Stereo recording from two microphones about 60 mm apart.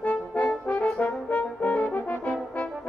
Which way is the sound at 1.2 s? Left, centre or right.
Left.